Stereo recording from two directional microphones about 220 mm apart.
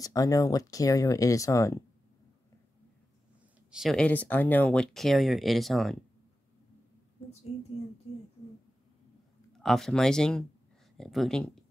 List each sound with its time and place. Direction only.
0.0 s speech: 15° left (ahead or behind)
3.7 s speech: centre (ahead or behind)
9.6 s speech: centre (ahead or behind)